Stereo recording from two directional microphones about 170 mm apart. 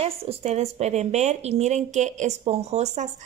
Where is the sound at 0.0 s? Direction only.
35° right (ahead or behind).